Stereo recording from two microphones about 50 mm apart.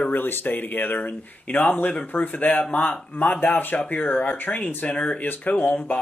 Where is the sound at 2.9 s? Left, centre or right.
Left.